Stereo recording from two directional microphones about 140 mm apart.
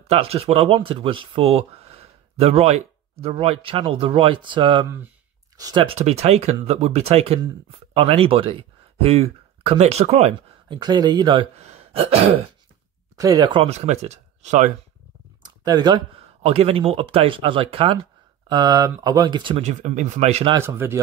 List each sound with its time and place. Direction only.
0.1 s speech: 45° right (ahead or behind); by 5.9 s 25° right (ahead or behind)
5.9 s speech: 50° right (ahead or behind)
10.7 s speech: 30° right (ahead or behind)
11.5 s gasp: 50° right (ahead or behind)
13.2 s speech: 25° right (ahead or behind)
13.5 s speech: 45° right (ahead or behind)
15.4 s a sound: 30° right (ahead or behind)
16.2 s speech: 45° right (ahead or behind)
18.5 s speech: 25° right (ahead or behind)
19.6 s speech: 55° right (ahead or behind)
20.6 s speech: 15° right (ahead or behind)